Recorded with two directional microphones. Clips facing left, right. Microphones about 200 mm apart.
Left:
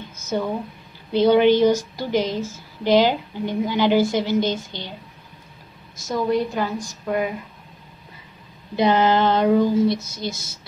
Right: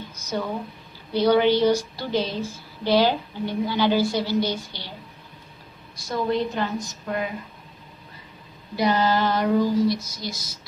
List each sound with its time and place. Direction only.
0.3 s female singing: 20° left (ahead or behind)
2.0 s a woman's voice: 15° left (ahead or behind)
4.1 s female singing: 20° left (ahead or behind)
6.0 s a woman's voice: 10° left (ahead or behind)
8.7 s female singing: 20° left (ahead or behind)